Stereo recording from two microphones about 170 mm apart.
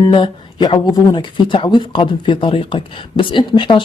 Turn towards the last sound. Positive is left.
turn(degrees=30)  # may be behind; listen again after turning